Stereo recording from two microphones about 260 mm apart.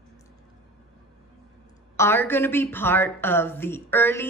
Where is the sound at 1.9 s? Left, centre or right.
Centre.